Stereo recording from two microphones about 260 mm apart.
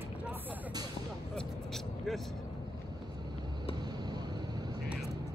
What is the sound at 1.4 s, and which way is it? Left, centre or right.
Vehicle, centre.